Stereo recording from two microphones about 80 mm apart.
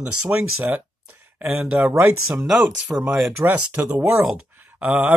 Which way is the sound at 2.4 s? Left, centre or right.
Centre.